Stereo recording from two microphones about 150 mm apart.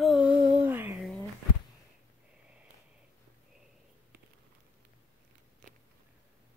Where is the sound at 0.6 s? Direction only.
15° right (ahead or behind).